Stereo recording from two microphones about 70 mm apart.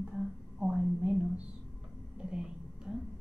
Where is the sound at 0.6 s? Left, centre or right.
Centre.